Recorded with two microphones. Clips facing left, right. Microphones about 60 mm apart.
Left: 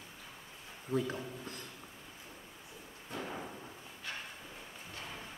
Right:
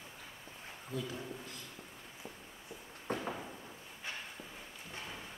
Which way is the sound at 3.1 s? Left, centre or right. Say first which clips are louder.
Right 4 dB; right.